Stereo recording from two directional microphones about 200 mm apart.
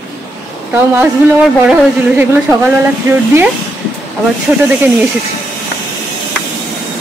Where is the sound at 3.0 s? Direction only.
10° right (ahead or behind).